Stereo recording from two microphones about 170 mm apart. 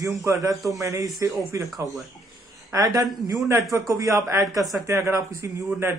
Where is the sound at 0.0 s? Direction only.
20° right (ahead or behind).